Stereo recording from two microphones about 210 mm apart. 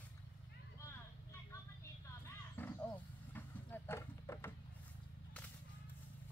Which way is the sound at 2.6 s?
10° left (ahead or behind).